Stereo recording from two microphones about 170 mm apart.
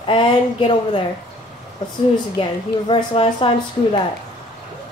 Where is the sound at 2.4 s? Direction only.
30° left (ahead or behind).